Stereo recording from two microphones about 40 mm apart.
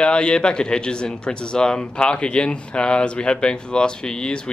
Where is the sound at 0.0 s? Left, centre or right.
Left.